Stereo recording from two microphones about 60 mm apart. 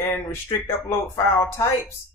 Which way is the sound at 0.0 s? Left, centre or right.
Left.